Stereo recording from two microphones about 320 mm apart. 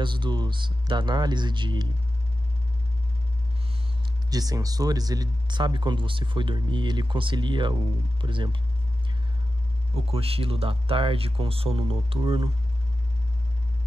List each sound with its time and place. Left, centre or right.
0.0 s speech: centre
4.3 s speech: centre
10.1 s speech: centre